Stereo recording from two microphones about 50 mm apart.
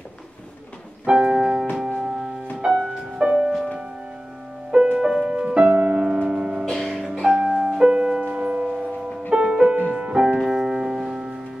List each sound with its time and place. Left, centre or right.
1.0 s piano: centre
1.8 s music: centre
4.9 s music: centre